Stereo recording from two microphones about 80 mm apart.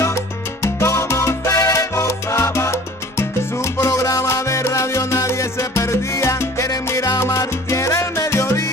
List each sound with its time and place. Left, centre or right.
0.0 s salsa music: left